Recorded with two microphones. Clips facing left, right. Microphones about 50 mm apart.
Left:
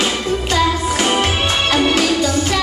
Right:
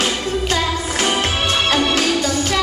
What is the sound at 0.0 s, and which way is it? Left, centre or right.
Music, left.